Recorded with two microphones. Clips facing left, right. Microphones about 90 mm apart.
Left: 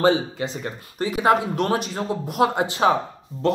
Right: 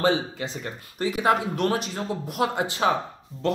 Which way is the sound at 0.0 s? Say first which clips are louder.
Left 4 dB; 30° left (ahead or behind).